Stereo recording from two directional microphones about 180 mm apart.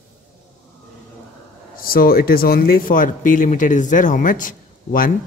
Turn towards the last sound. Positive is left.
turn(degrees=50)  # may be behind; listen again after turning